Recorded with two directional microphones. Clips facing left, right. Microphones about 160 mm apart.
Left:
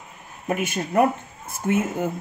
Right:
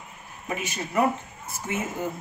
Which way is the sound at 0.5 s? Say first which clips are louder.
Left 6 dB; 55° left (ahead or behind).